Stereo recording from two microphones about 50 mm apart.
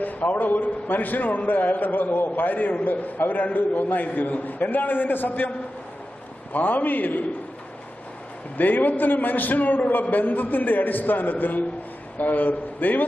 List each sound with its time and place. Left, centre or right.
0.0 s a man's voice: left
6.5 s a man's voice: left
8.5 s a man's voice: left